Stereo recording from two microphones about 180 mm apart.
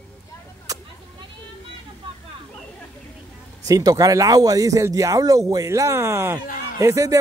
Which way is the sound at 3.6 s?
20° right (ahead or behind).